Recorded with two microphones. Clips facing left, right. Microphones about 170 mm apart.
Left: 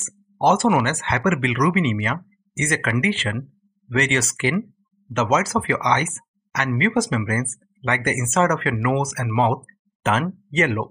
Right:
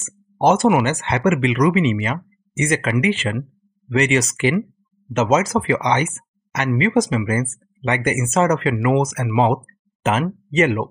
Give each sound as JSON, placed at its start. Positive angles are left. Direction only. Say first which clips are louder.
{"t": 0.5, "sound": "speech", "louder": "right 3 dB", "side_deg": -15}